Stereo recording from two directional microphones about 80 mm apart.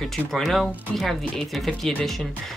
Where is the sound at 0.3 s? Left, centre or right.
Centre.